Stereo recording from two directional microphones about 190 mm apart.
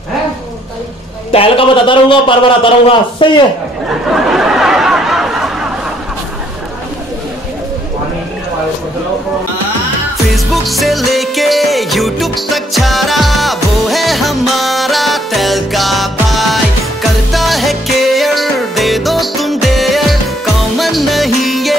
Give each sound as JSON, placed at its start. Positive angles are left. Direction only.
{"t": 1.3, "sound": "a man's voice", "side_deg": 30}
{"t": 4.1, "sound": "a sound", "side_deg": -5}
{"t": 10.3, "sound": "music", "side_deg": 0}